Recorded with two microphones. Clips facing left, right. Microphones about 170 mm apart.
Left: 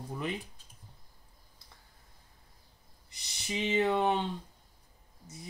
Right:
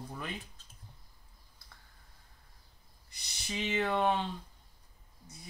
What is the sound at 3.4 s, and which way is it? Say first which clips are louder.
Speech: left 4 dB; 20° left (ahead or behind).